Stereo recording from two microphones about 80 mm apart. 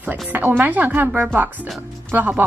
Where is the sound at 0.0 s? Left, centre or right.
Right.